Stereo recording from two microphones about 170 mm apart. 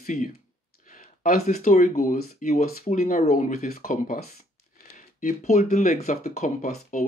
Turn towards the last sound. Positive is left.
turn(degrees=40)  # may be behind; listen again after turning